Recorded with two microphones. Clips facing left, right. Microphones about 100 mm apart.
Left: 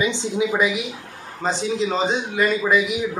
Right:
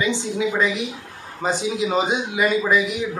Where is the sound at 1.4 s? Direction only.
10° right (ahead or behind).